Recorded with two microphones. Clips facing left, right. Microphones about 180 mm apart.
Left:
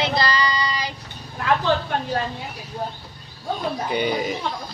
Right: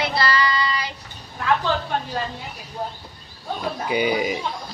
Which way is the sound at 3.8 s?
10° right (ahead or behind).